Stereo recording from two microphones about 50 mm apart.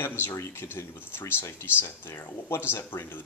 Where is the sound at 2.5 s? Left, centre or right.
Left.